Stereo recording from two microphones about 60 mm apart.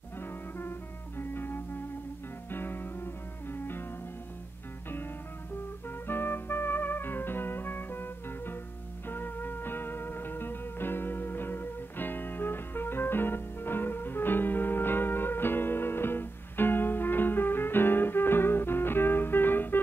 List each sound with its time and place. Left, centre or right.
0.2 s music: left
5.9 s music: left